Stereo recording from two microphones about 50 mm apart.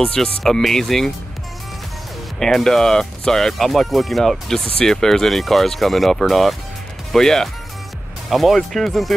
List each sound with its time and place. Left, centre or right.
0.0 s speech: centre
2.4 s speech: centre
8.3 s speech: centre